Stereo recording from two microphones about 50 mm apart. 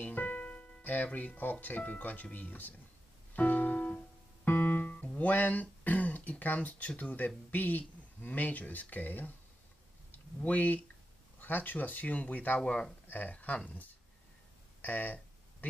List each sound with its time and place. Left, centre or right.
0.0 s music: left
2.3 s speech: left
3.3 s music: left
4.5 s music: left
7.0 s speech: left
14.8 s speech: left